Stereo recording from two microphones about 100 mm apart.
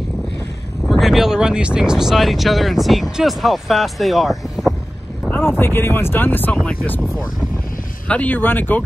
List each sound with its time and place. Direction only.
0.8 s speech: centre (ahead or behind)
5.5 s speech: 20° left (ahead or behind)
7.0 s speech: 5° left (ahead or behind)
8.1 s speech: 15° left (ahead or behind)